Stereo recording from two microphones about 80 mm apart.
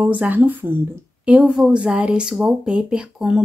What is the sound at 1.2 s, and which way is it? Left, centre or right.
Speech, centre.